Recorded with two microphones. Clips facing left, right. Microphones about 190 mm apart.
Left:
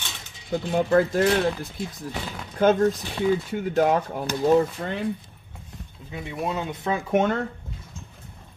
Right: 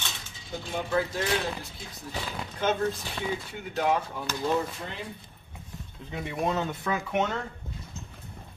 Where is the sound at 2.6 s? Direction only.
50° left (ahead or behind).